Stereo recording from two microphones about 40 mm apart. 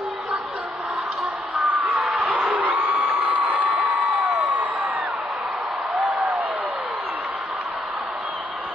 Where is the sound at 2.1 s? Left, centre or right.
Right.